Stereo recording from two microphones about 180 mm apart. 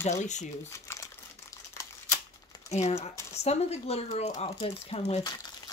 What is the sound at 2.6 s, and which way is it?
Speech, 35° left (ahead or behind).